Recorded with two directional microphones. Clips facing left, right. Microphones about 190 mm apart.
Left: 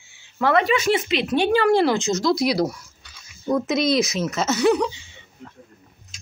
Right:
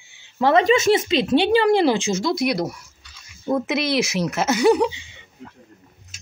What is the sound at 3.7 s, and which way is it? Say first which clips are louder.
Speech: left 1 dB; 65° right (ahead or behind).